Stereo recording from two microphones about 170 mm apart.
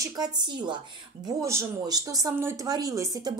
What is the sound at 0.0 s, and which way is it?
A woman's voice, 25° right (ahead or behind).